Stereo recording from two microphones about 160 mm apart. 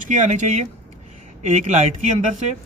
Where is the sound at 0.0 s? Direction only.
50° right (ahead or behind).